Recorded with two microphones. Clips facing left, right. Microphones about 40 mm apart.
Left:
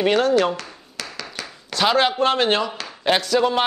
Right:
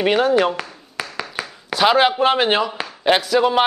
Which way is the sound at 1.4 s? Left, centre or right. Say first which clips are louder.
Right 4 dB; centre.